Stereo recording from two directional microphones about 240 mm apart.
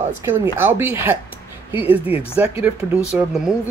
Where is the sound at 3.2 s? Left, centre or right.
Centre.